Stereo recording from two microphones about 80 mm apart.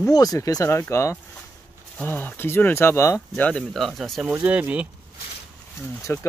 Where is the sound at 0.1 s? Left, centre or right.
Left.